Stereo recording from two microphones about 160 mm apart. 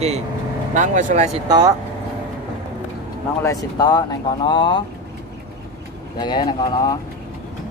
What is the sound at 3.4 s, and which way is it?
Speech, 25° left (ahead or behind).